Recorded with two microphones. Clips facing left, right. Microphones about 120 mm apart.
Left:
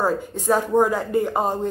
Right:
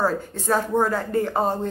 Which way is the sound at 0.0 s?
15° left (ahead or behind).